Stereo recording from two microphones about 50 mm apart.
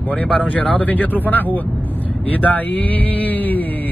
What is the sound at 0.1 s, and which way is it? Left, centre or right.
Speech, left.